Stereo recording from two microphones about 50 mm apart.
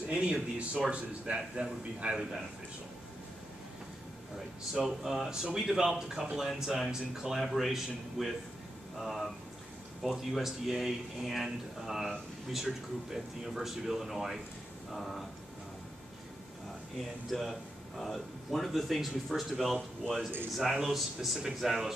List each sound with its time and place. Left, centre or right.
0.1 s speech: centre
4.8 s a man's voice: centre
17.3 s a man's voice: centre